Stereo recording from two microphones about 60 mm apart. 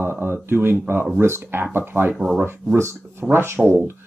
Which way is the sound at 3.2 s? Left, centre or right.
Centre.